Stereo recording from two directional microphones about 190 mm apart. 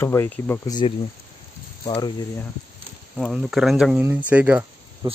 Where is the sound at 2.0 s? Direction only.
20° left (ahead or behind).